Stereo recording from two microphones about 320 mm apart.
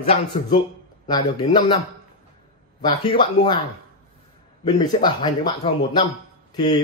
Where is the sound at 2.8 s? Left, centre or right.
Centre.